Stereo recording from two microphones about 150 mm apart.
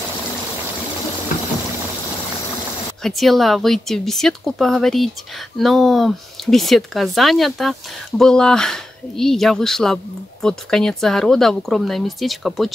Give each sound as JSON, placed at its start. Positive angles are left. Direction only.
{"t": 3.0, "sound": "speech", "side_deg": 0}